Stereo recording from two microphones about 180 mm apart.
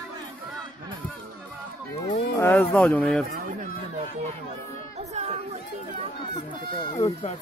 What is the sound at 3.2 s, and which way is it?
Speech, 50° right (ahead or behind).